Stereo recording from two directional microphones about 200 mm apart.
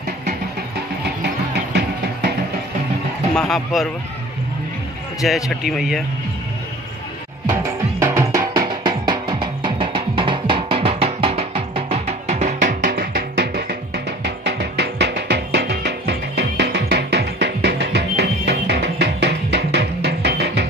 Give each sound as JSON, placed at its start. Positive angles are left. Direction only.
{"t": 3.3, "sound": "a man's voice", "side_deg": 5}
{"t": 5.2, "sound": "a man's voice", "side_deg": 0}
{"t": 8.0, "sound": "music", "side_deg": -15}